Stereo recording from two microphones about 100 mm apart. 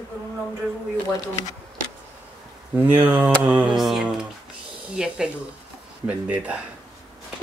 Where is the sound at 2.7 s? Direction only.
20° right (ahead or behind).